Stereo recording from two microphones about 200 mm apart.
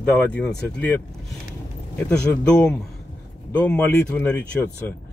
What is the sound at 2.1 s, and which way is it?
Speech, 5° left (ahead or behind).